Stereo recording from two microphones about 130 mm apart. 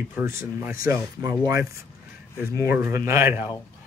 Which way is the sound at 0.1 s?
20° right (ahead or behind).